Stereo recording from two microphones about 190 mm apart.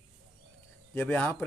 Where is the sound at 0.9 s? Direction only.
10° left (ahead or behind).